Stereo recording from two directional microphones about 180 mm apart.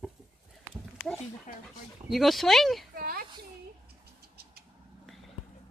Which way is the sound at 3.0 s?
55° right (ahead or behind).